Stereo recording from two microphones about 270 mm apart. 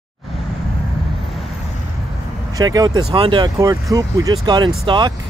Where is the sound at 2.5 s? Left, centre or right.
Centre.